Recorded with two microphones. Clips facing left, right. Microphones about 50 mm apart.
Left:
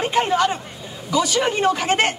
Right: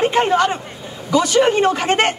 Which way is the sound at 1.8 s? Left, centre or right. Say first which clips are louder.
Right 3 dB; right.